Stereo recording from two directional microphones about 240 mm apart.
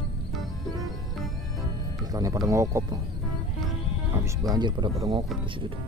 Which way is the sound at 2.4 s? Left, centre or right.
Centre.